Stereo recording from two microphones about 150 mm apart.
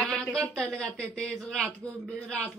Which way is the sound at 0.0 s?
5° left (ahead or behind).